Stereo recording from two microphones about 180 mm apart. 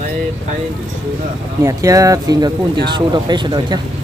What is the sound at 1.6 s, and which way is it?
Speech, 20° right (ahead or behind).